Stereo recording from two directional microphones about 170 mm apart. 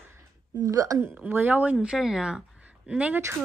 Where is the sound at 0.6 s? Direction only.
20° right (ahead or behind).